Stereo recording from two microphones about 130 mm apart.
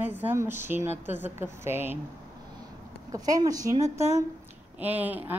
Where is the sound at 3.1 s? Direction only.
30° right (ahead or behind).